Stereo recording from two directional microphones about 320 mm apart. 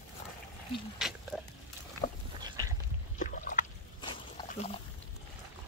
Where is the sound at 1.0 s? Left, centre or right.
Centre.